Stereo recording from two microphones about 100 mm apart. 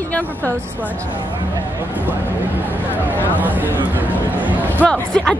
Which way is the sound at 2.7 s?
15° right (ahead or behind).